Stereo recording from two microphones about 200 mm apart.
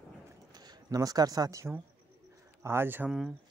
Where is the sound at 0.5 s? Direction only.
20° right (ahead or behind).